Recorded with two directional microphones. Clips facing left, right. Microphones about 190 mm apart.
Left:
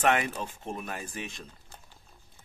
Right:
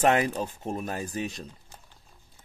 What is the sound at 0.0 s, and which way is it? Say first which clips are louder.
A man's voice: right 4 dB; 35° right (ahead or behind).